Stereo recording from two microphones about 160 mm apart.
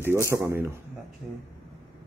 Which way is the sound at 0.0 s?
15° right (ahead or behind).